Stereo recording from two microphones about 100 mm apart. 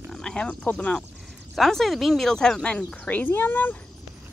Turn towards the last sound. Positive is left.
turn(degrees=20)  # may be behind; listen again after turning